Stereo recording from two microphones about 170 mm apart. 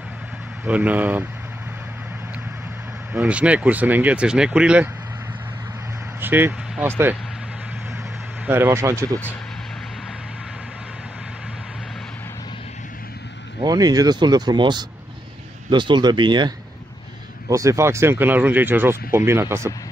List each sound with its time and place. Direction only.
0.7 s speech: 10° right (ahead or behind)
3.1 s speech: 5° right (ahead or behind)
6.2 s speech: 10° right (ahead or behind)
8.5 s speech: 15° right (ahead or behind)
13.7 s speech: 20° right (ahead or behind)